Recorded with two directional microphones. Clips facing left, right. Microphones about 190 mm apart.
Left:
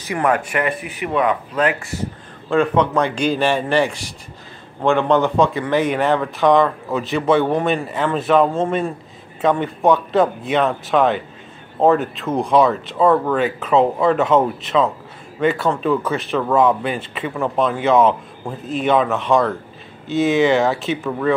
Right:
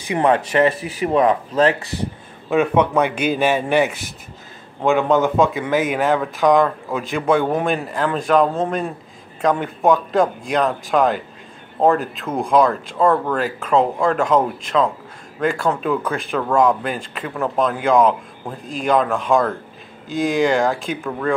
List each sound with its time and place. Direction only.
0.1 s speech: 25° right (ahead or behind)
2.5 s a man's voice: 10° right (ahead or behind)
15.4 s speech: centre (ahead or behind)